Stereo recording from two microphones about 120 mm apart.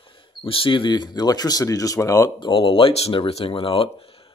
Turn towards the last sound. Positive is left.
turn(degrees=50)  # may be behind; listen again after turning